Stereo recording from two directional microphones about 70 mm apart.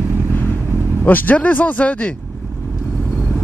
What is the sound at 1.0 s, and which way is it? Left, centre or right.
Speech, left.